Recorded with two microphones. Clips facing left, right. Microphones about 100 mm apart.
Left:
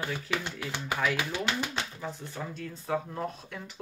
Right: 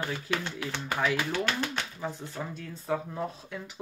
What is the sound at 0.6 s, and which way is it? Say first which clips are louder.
Speech: right 1 dB; 15° left (ahead or behind).